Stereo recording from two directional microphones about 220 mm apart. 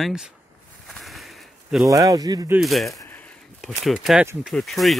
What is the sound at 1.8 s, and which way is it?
Speech, 15° right (ahead or behind).